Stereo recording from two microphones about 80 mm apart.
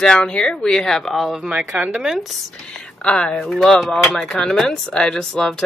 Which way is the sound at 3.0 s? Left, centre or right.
Centre.